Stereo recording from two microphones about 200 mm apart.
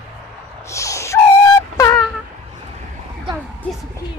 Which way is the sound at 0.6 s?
15° left (ahead or behind).